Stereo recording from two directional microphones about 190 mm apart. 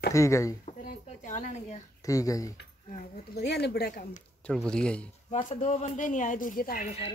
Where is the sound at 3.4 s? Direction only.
60° left (ahead or behind).